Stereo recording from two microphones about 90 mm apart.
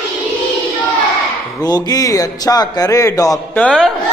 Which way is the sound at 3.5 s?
10° left (ahead or behind).